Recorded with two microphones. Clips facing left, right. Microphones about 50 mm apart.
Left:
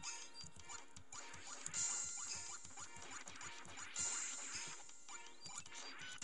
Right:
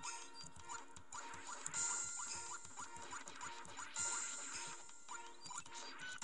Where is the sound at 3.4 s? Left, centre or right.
Left.